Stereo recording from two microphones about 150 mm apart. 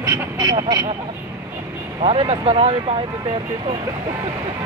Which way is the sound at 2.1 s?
40° right (ahead or behind).